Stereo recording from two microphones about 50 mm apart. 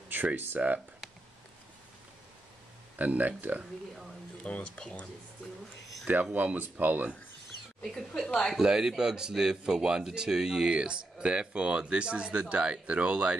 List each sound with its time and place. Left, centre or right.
0.1 s speech: right
3.0 s speech: right
4.5 s speech: left
6.3 s speech: right
7.8 s speech: centre
8.5 s speech: centre